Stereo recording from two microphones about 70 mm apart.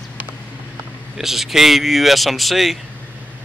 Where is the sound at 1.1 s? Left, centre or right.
Centre.